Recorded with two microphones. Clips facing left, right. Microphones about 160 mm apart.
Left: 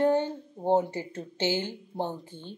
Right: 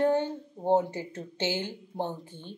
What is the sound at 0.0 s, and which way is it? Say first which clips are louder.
A woman's voice: left 1 dB; 15° left (ahead or behind).